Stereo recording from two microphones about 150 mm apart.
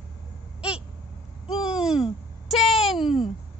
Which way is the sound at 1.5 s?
5° right (ahead or behind).